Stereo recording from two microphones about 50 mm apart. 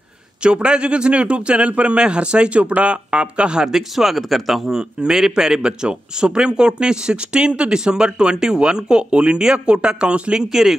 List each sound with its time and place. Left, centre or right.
0.4 s speech: right